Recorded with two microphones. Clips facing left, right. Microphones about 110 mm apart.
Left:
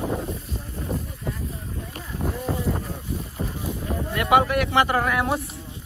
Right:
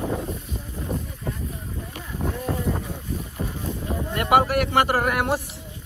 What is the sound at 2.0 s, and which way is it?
Boat, centre (ahead or behind).